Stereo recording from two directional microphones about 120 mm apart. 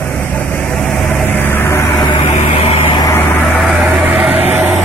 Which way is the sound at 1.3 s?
20° left (ahead or behind).